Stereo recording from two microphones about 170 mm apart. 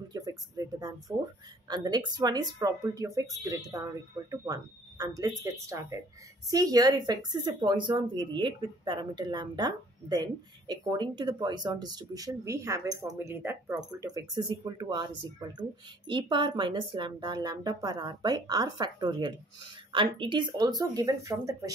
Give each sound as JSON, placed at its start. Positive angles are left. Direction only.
{"t": 0.1, "sound": "speech", "side_deg": -20}
{"t": 16.1, "sound": "speech", "side_deg": -30}